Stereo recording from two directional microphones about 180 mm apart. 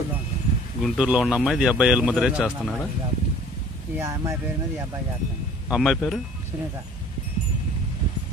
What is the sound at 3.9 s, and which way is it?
Speech, 15° right (ahead or behind).